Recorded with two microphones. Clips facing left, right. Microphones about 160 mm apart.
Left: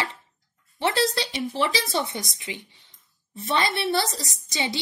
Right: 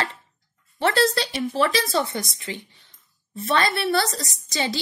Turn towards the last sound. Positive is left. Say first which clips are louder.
# right 3 dB
turn(degrees=20)  # may be behind; listen again after turning